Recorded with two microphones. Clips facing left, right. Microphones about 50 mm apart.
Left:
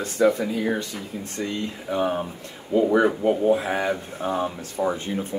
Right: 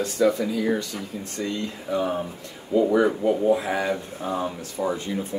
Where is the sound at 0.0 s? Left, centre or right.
Left.